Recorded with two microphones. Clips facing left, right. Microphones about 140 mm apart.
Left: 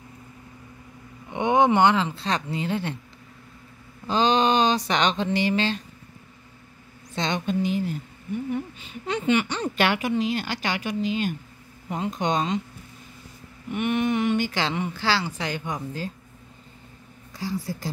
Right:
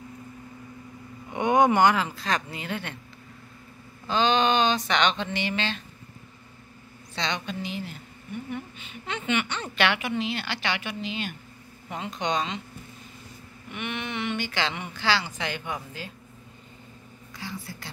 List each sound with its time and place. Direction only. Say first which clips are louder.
1.3 s speech: left 1 dB; 20° left (ahead or behind)
4.1 s a woman's voice: left 2 dB; 35° left (ahead or behind)
7.2 s a woman's voice: left 6 dB; 50° left (ahead or behind)
13.7 s a woman's voice: left 10 dB; 45° left (ahead or behind)
17.4 s a woman's voice: left 8 dB; 35° left (ahead or behind)